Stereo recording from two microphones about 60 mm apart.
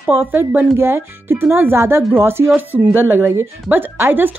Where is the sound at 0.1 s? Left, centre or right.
Right.